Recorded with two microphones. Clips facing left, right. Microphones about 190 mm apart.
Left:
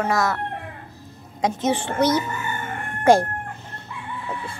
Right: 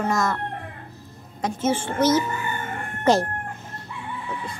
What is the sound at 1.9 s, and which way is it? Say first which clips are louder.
Speech: right 1 dB; 65° left (ahead or behind).